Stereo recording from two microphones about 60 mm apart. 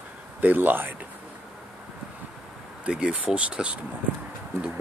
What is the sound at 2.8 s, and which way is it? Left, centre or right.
Speech, centre.